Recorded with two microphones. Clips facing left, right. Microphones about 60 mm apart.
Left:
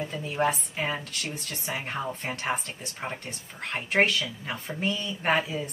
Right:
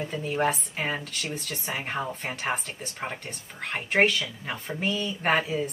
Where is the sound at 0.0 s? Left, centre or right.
Centre.